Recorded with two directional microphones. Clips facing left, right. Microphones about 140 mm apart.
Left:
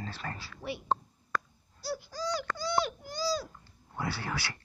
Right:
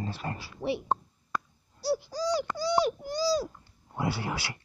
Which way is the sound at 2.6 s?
35° right (ahead or behind).